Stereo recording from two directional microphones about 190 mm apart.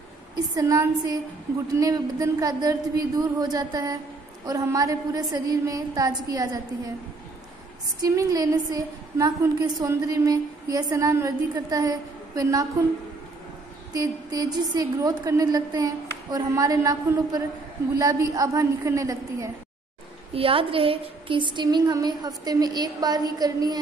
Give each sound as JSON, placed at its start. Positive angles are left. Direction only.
{"t": 0.6, "sound": "a woman's voice", "side_deg": -15}
{"t": 8.0, "sound": "a woman's voice", "side_deg": -15}
{"t": 13.9, "sound": "a woman's voice", "side_deg": -20}
{"t": 20.3, "sound": "a woman's voice", "side_deg": -30}